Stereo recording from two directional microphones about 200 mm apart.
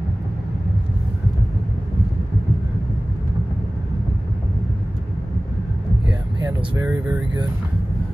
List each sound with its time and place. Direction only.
6.4 s vehicle: 20° right (ahead or behind)